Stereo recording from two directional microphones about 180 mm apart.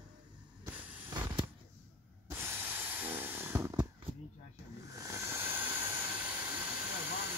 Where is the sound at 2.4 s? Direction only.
10° right (ahead or behind).